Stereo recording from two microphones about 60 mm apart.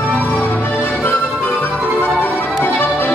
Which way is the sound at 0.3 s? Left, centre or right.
Left.